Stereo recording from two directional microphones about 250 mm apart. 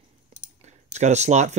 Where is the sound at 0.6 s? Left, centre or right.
Right.